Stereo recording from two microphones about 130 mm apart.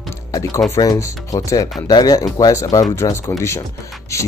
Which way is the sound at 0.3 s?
25° left (ahead or behind).